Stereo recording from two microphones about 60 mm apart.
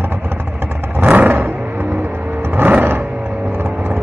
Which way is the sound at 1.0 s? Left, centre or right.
Right.